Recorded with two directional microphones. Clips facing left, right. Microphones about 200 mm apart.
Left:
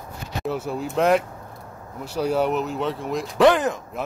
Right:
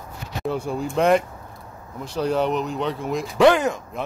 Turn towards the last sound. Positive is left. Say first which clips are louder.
# right 1 dB
turn(degrees=0)  # may be behind; listen again after turning